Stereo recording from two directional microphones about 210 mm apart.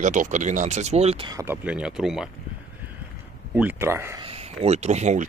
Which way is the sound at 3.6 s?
10° right (ahead or behind).